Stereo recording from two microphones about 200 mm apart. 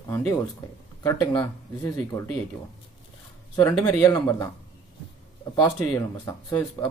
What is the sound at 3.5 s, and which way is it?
Speech, 20° left (ahead or behind).